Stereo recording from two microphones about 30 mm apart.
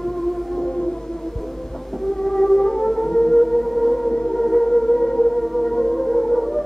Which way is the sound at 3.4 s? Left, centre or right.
Centre.